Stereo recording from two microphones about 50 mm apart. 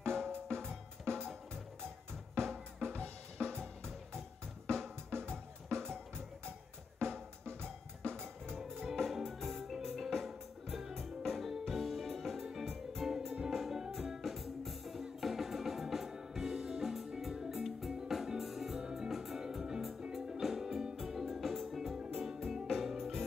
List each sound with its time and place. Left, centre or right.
0.1 s drum: right
1.1 s music: right
2.8 s drum kit: right
5.9 s music: right
7.0 s drum: right
8.9 s music: centre